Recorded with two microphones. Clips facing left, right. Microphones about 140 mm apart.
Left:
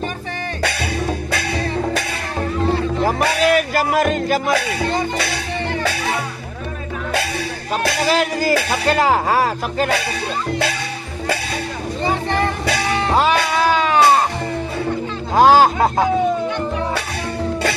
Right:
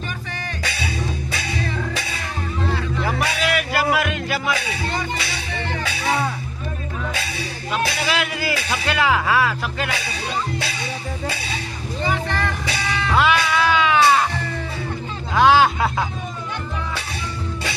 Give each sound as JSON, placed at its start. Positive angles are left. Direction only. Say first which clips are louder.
{"t": 0.6, "sound": "music", "louder": "left 8 dB", "side_deg": 60}
{"t": 3.0, "sound": "music", "louder": "left 5 dB", "side_deg": 40}
{"t": 7.7, "sound": "music", "louder": "left 5 dB", "side_deg": 40}
{"t": 8.7, "sound": "speech", "louder": "left 1 dB", "side_deg": 40}
{"t": 12.0, "sound": "vehicle", "louder": "left 4 dB", "side_deg": 30}
{"t": 12.9, "sound": "music", "louder": "left 2 dB", "side_deg": 40}
{"t": 15.3, "sound": "music", "louder": "left 3 dB", "side_deg": 40}